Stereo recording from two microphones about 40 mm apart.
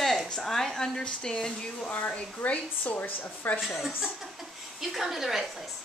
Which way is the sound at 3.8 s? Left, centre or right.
Centre.